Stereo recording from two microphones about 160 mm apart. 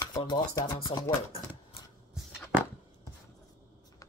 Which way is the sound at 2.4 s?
15° left (ahead or behind).